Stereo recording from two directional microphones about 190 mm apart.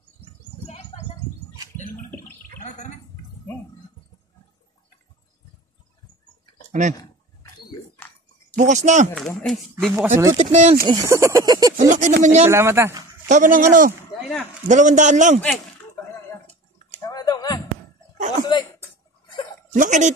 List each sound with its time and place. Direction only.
0.7 s bird: 30° left (ahead or behind)
6.7 s speech: 40° right (ahead or behind)
8.5 s a man's voice: 40° right (ahead or behind)
9.1 s speech: centre (ahead or behind)
9.9 s speech: 15° right (ahead or behind)
10.3 s a man's voice: 40° right (ahead or behind)
10.9 s speech: 20° right (ahead or behind)
11.7 s a man's voice: 40° right (ahead or behind)
12.4 s speech: 15° right (ahead or behind)
13.3 s a man's voice: 40° right (ahead or behind)
17.0 s a sound: 20° left (ahead or behind)
18.4 s chuckle: 25° left (ahead or behind)
19.7 s a sound: 40° right (ahead or behind)